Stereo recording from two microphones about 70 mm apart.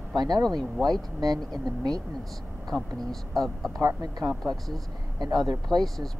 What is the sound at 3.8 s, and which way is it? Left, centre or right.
Speech, right.